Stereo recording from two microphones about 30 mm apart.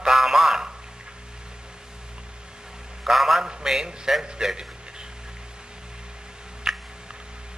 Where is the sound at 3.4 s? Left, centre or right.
Right.